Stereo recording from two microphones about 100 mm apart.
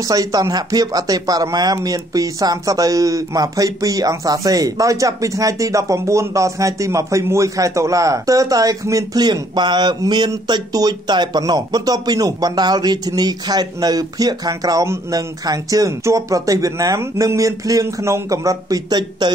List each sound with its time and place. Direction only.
0.1 s speech: 40° right (ahead or behind)